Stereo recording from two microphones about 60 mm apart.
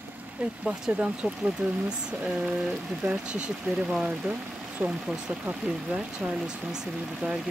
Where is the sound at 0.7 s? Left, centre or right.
Centre.